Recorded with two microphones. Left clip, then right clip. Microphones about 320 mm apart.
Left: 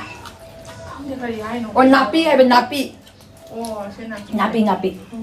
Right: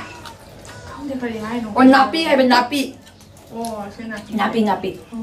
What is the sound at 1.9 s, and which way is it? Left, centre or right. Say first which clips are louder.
Speech: right 3 dB; centre.